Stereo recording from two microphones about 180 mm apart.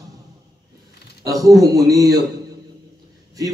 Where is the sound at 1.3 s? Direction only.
20° right (ahead or behind).